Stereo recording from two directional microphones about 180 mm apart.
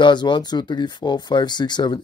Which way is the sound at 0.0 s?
25° left (ahead or behind).